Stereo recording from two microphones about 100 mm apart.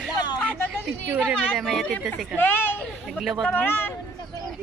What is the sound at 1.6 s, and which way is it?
Speech, centre (ahead or behind).